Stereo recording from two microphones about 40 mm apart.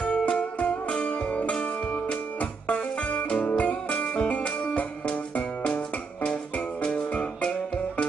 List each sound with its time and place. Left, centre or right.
0.0 s music: left
2.7 s music: left
6.8 s frog: left